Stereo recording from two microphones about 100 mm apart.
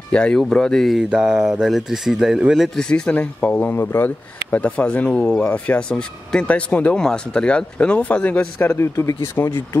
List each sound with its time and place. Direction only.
0.1 s speech: 10° left (ahead or behind)
1.1 s a sound: 5° right (ahead or behind)
1.6 s speech: 5° right (ahead or behind)
2.8 s speech: 10° left (ahead or behind)
8.7 s speech: 25° left (ahead or behind)